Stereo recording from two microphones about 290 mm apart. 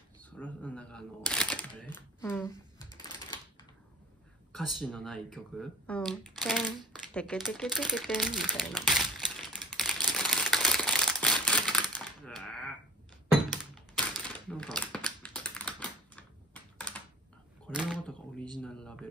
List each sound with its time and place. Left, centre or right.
0.2 s shuffling cards: centre
2.0 s a sound: centre
4.5 s speech: centre
8.4 s crumpling: centre
12.2 s typing: centre
14.3 s typing: centre
17.6 s a sound: centre